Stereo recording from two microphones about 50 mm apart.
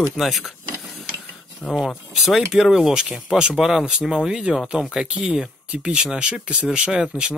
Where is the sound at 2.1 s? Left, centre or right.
Centre.